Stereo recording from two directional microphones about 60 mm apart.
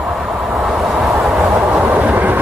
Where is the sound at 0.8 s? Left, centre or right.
Centre.